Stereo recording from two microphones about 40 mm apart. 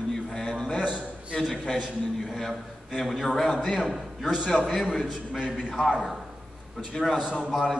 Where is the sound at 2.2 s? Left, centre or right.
Centre.